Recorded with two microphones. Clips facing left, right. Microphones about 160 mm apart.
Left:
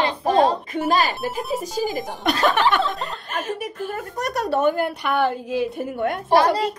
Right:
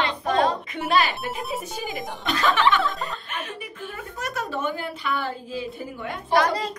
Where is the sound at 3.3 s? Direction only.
40° left (ahead or behind).